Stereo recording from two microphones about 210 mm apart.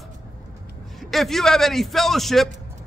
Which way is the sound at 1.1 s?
Centre (ahead or behind).